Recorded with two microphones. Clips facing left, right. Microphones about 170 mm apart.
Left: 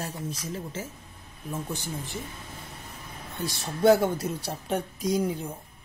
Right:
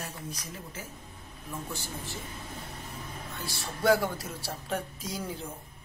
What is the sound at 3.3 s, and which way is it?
A woman's voice, 20° left (ahead or behind).